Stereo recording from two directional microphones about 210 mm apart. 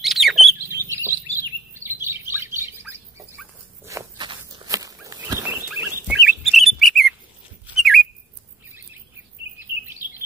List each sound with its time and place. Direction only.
0.0 s bird: centre (ahead or behind)
1.3 s bird: 10° right (ahead or behind)
3.8 s a sound: 15° right (ahead or behind)
5.7 s bird: 5° right (ahead or behind)